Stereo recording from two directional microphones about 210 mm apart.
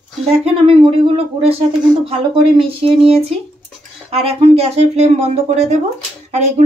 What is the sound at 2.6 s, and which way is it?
Speech, 25° right (ahead or behind).